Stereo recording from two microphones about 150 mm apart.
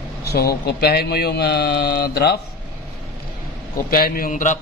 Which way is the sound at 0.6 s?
90° left.